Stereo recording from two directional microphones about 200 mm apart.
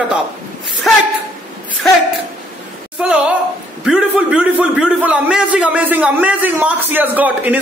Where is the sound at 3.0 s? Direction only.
5° right (ahead or behind).